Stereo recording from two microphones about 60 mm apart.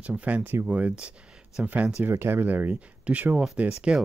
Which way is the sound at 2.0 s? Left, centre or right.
Right.